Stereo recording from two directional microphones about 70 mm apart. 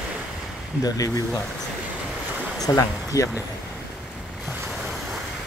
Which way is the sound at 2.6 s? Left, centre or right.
Left.